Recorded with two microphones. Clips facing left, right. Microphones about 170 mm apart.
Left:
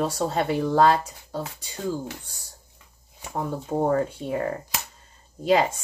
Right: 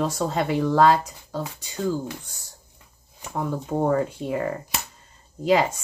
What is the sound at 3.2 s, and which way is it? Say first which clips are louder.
Speech: right 1 dB; 35° left (ahead or behind).